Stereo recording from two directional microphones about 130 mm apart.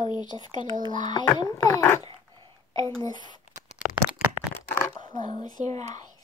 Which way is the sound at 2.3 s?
35° right (ahead or behind).